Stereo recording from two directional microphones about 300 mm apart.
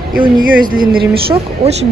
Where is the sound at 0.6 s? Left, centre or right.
Right.